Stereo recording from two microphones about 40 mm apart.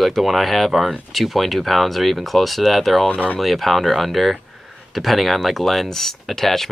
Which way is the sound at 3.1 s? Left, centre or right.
Left.